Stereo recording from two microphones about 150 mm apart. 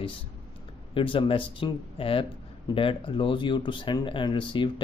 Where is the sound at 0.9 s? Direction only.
35° left (ahead or behind).